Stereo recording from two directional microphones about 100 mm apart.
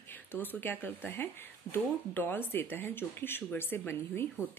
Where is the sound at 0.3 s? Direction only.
20° left (ahead or behind).